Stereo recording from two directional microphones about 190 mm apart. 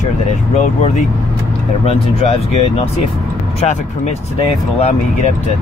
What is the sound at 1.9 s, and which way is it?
Speech, 35° left (ahead or behind).